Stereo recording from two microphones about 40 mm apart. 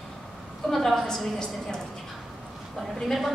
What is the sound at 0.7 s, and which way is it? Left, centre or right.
Speech, centre.